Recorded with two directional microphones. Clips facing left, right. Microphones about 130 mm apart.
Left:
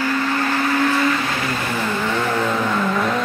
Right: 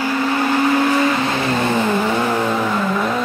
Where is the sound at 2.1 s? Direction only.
15° right (ahead or behind).